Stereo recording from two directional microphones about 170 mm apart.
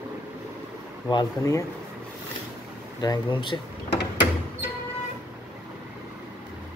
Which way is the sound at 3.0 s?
25° left (ahead or behind).